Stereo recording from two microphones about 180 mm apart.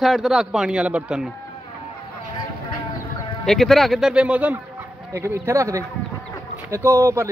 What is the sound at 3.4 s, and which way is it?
A man's voice, centre (ahead or behind).